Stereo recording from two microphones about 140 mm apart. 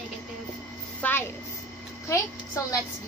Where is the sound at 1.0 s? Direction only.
15° left (ahead or behind).